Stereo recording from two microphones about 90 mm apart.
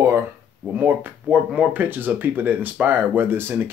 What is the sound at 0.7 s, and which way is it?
Speech, 15° right (ahead or behind).